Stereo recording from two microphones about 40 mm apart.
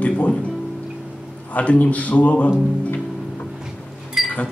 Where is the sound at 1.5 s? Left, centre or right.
Left.